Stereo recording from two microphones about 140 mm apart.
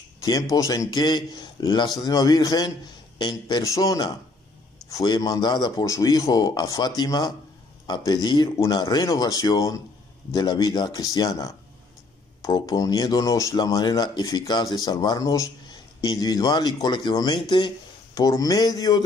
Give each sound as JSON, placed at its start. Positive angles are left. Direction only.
{"t": 0.2, "sound": "speech", "side_deg": 25}